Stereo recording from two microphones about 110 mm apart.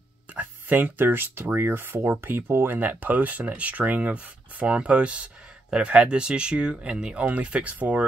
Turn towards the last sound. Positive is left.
turn(degrees=-10)  # may be behind; listen again after turning